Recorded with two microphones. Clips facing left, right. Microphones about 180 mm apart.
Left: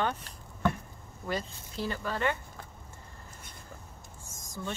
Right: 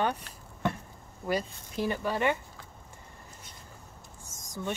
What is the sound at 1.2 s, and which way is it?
Speech, 15° right (ahead or behind).